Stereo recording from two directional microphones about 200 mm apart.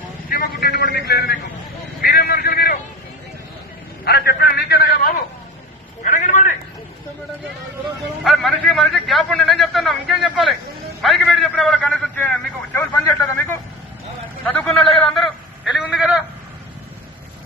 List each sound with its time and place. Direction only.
0.3 s a man's voice: 50° left (ahead or behind)
2.0 s vehicle: 50° left (ahead or behind)
4.0 s a man's voice: 50° left (ahead or behind)
6.0 s a sound: 40° left (ahead or behind)
8.2 s a man's voice: centre (ahead or behind)
14.4 s a sound: 5° left (ahead or behind)